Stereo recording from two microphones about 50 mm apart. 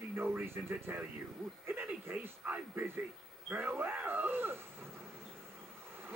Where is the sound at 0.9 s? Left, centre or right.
Right.